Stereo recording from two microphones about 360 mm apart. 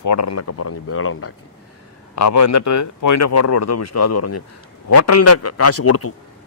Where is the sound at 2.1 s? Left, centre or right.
Left.